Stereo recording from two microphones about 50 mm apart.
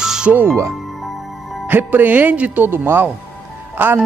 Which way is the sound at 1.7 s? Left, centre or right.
Right.